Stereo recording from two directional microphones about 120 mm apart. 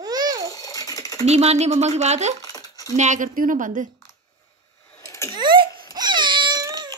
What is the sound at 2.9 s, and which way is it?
Speech, 90° right.